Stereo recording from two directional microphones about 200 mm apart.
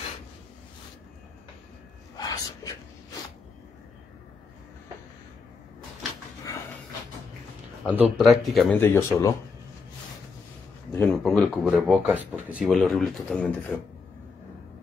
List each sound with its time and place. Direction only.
2.1 s a sound: 20° left (ahead or behind)
7.9 s speech: 5° right (ahead or behind)
8.7 s speech: 10° left (ahead or behind)
10.9 s speech: 5° left (ahead or behind)